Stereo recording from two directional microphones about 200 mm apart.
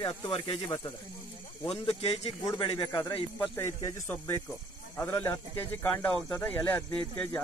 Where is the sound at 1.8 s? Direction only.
30° left (ahead or behind).